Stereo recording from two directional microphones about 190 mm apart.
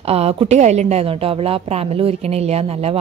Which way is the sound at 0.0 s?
30° right (ahead or behind).